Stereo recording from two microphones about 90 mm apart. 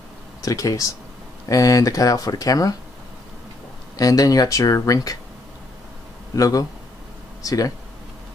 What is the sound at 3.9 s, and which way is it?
Speech, 40° left (ahead or behind).